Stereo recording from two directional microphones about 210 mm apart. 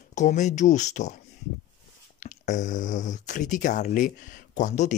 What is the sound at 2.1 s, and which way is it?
Speech, 35° left (ahead or behind).